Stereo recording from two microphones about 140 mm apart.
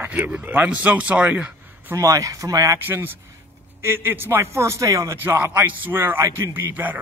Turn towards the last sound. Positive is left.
turn(degrees=-10)  # may be behind; listen again after turning